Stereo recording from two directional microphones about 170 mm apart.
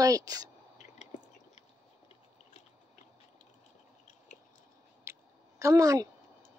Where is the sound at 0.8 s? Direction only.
45° left (ahead or behind).